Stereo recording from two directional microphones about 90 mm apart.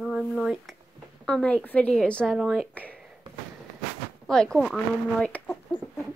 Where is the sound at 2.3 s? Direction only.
Centre (ahead or behind).